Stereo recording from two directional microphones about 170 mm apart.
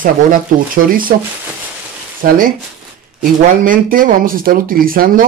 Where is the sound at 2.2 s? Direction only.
55° right (ahead or behind).